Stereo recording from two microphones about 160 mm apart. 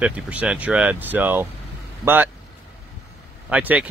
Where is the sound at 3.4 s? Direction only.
10° right (ahead or behind).